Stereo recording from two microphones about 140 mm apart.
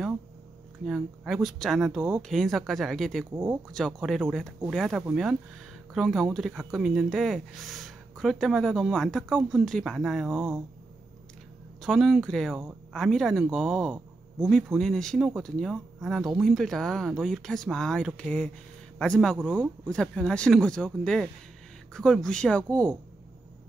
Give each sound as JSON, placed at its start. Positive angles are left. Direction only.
{"t": 0.8, "sound": "speech", "side_deg": 0}
{"t": 2.0, "sound": "speech", "side_deg": -15}
{"t": 2.2, "sound": "speech", "side_deg": 0}
{"t": 10.3, "sound": "speech", "side_deg": -15}
{"t": 11.8, "sound": "speech", "side_deg": 0}
{"t": 19.3, "sound": "speech", "side_deg": -10}
{"t": 19.9, "sound": "speech", "side_deg": 5}